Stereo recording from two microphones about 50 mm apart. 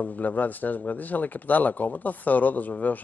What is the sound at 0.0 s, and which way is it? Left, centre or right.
Speech, left.